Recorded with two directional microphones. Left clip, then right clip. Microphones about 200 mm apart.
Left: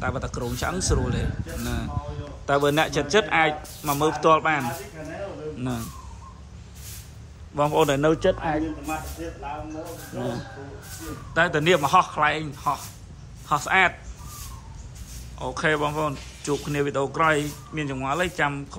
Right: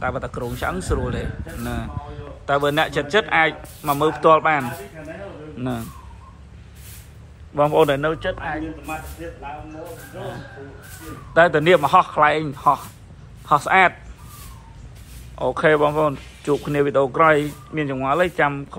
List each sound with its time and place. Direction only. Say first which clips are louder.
0.0 s a man's voice: right 4 dB; 15° left (ahead or behind)
7.5 s speech: right 5 dB; 15° left (ahead or behind)
8.0 s a man's voice: left 2 dB; 35° left (ahead or behind)
8.8 s speech: even; 55° left (ahead or behind)
11.3 s speech: right 6 dB; 10° left (ahead or behind)
15.3 s speech: right 7 dB; 10° left (ahead or behind)